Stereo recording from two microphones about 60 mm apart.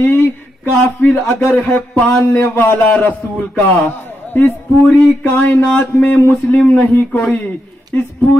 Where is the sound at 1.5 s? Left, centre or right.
Left.